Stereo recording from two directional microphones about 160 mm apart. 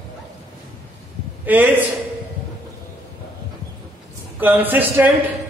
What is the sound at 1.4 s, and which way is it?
Speech, 10° right (ahead or behind).